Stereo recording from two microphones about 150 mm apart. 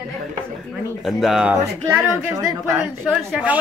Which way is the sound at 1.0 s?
Centre (ahead or behind).